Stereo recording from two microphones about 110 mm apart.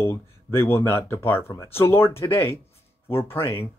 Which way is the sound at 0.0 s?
25° left (ahead or behind).